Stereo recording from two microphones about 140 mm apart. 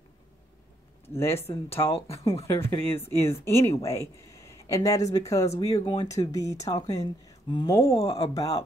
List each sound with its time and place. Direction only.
1.0 s speech: 20° left (ahead or behind)